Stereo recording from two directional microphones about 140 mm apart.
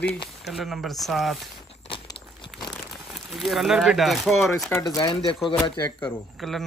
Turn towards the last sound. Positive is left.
turn(degrees=0)  # may be behind; listen again after turning